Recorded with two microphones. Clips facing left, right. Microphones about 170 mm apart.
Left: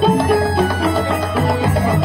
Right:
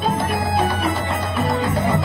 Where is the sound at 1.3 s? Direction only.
75° left (ahead or behind).